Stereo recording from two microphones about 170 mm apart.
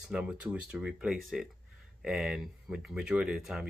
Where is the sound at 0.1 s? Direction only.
5° right (ahead or behind).